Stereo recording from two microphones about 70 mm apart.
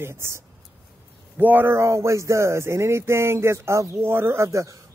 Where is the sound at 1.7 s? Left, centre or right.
Right.